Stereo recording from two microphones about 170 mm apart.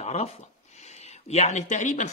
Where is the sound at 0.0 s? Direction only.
40° left (ahead or behind).